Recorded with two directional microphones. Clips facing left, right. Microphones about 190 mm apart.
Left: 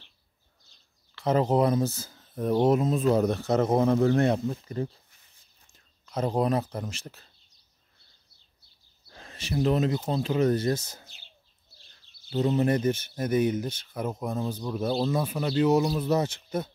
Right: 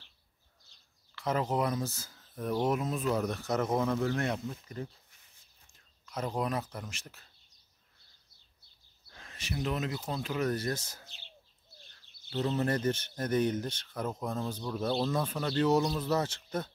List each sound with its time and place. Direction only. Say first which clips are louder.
1.1 s speech: left 7 dB; 30° left (ahead or behind)
6.0 s speech: left 8 dB; 30° left (ahead or behind)
9.1 s speech: left 8 dB; 30° left (ahead or behind)
12.3 s speech: left 6 dB; 15° left (ahead or behind)